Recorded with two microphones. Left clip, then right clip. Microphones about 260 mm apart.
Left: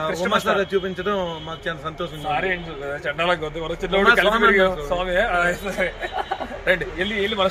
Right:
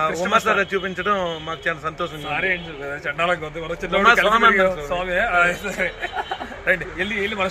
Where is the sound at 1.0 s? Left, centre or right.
Right.